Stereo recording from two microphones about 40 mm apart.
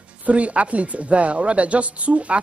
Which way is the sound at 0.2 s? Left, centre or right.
Right.